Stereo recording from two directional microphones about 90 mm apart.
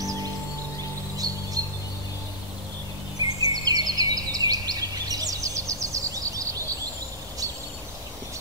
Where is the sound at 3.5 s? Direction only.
45° right (ahead or behind).